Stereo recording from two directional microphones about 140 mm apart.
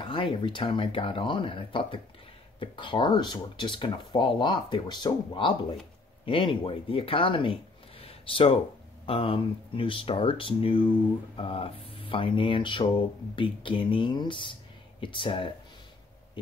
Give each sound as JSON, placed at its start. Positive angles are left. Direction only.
{"t": 0.0, "sound": "speech", "side_deg": 35}
{"t": 8.0, "sound": "a sound", "side_deg": 40}
{"t": 9.0, "sound": "speech", "side_deg": 40}